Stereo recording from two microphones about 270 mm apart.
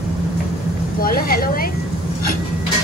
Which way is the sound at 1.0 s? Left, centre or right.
Left.